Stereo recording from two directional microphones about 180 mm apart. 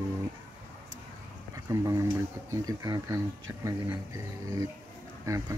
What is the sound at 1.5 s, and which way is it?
Speech, 15° right (ahead or behind).